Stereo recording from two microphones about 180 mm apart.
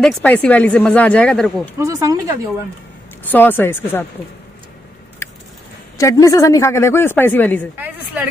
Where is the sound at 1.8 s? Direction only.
20° right (ahead or behind).